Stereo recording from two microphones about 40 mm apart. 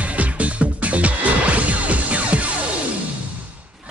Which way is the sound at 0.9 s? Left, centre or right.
Right.